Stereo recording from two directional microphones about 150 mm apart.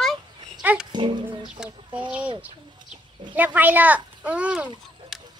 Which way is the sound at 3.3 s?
10° right (ahead or behind).